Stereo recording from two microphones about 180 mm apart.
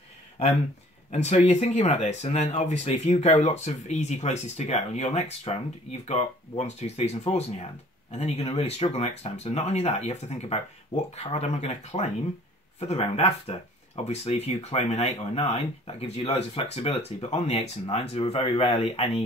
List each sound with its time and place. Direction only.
1.1 s speech: 35° left (ahead or behind)